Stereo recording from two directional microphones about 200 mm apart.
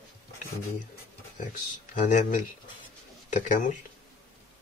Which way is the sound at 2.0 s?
40° left (ahead or behind).